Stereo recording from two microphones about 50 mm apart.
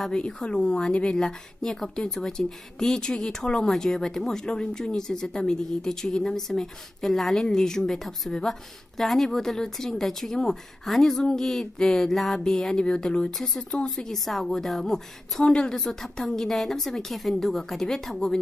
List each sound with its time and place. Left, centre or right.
0.1 s speech: centre
12.8 s a woman's voice: centre